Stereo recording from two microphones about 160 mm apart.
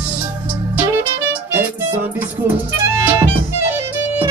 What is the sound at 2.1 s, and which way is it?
Music, 10° right (ahead or behind).